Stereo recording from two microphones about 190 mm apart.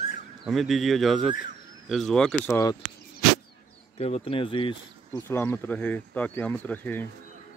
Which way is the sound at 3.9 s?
30° left (ahead or behind).